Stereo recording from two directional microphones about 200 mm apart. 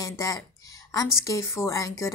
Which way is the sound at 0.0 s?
15° left (ahead or behind).